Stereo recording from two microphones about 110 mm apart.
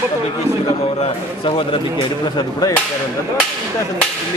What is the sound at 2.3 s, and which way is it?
Speech, 35° left (ahead or behind).